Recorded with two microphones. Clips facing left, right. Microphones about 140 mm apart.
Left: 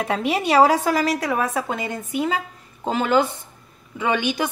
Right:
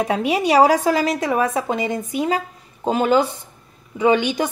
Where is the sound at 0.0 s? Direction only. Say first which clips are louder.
Right 3 dB; 15° right (ahead or behind).